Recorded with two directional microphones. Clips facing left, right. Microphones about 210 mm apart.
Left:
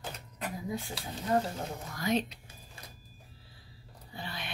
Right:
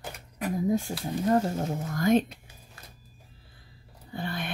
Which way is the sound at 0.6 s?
45° right (ahead or behind).